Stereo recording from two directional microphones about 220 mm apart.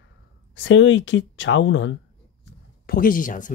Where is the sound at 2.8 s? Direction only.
40° left (ahead or behind).